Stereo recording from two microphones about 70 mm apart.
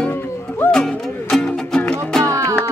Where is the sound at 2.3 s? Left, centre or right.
Right.